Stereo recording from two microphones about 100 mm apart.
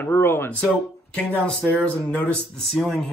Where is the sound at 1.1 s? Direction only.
10° left (ahead or behind).